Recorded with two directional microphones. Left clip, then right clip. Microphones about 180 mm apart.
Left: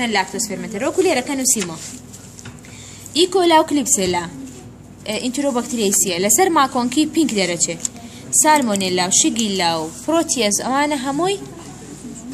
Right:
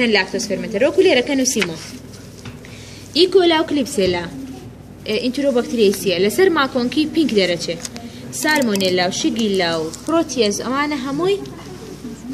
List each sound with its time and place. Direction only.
0.0 s a woman's voice: 60° left (ahead or behind)
3.1 s a woman's voice: 70° left (ahead or behind); by 11.3 s 55° left (ahead or behind)